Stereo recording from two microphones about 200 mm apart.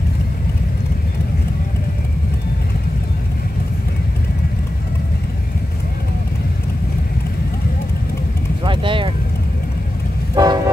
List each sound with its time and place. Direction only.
8.6 s vehicle: 25° right (ahead or behind)
10.3 s vehicle: 20° right (ahead or behind)